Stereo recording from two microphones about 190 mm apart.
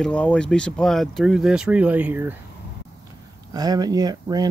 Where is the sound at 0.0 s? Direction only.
5° left (ahead or behind); by 2.3 s 10° right (ahead or behind).